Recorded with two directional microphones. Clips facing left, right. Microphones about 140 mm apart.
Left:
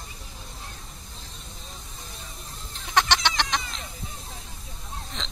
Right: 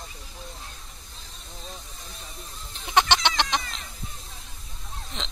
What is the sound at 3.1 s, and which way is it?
Chicken, 25° right (ahead or behind).